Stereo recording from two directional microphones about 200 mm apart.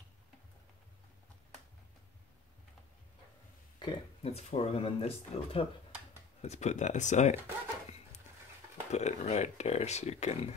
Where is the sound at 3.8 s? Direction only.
25° left (ahead or behind).